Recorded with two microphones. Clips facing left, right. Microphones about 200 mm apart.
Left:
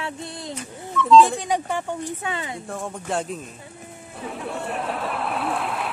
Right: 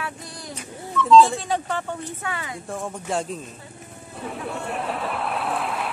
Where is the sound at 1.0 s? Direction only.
Centre (ahead or behind).